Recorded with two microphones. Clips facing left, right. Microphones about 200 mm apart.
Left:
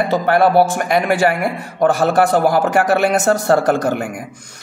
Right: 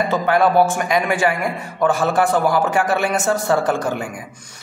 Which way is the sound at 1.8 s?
40° left (ahead or behind).